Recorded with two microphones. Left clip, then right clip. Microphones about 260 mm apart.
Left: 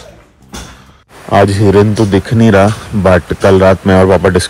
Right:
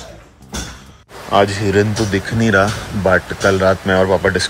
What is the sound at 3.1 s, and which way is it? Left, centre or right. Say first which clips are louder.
Speech: left 6 dB; left.